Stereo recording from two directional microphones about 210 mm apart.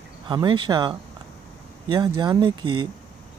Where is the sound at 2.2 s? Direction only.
20° right (ahead or behind).